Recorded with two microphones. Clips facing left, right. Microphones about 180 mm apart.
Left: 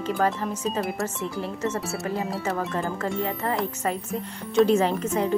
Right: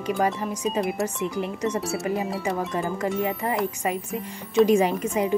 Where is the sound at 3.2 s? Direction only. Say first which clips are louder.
Even; 15° right (ahead or behind).